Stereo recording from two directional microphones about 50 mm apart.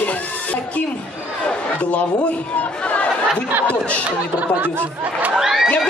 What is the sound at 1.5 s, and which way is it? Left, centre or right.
Speech, left.